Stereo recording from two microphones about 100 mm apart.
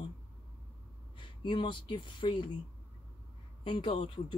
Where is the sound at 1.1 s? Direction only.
55° left (ahead or behind).